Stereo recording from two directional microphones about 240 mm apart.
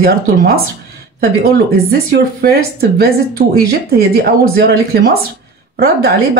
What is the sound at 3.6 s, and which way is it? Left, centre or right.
Speech, right.